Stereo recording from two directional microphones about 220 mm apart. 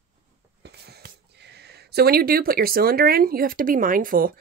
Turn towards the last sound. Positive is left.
turn(degrees=-40)  # may be behind; listen again after turning